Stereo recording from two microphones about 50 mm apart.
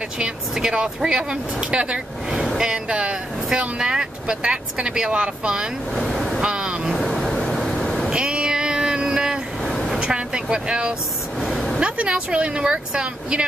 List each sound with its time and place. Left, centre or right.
0.2 s speech: centre
5.9 s waves: centre
6.4 s vehicle: centre
6.9 s vehicle: centre
8.1 s a sound: centre
11.5 s vehicle: centre
11.8 s speech: right